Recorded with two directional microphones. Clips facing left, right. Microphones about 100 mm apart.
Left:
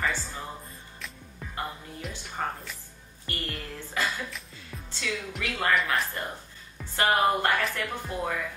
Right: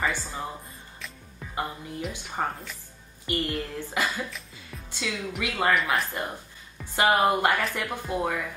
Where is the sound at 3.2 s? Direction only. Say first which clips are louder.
Right 7 dB; 15° right (ahead or behind).